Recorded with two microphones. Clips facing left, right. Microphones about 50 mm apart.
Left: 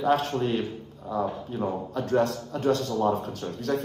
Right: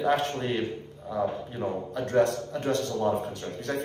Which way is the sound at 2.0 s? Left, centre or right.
Right.